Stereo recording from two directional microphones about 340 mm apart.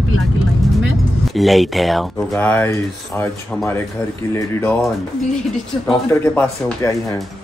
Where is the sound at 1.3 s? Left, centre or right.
Centre.